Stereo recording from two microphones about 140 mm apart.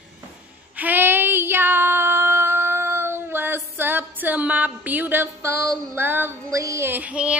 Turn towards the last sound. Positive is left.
turn(degrees=-10)  # may be behind; listen again after turning